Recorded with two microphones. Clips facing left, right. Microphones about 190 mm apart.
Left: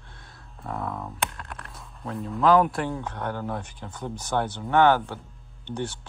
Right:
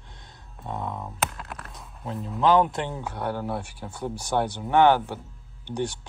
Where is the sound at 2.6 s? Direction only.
20° right (ahead or behind).